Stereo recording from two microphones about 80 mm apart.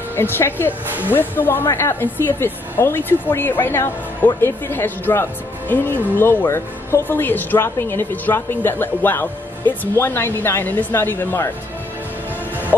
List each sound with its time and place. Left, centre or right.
0.1 s speech: left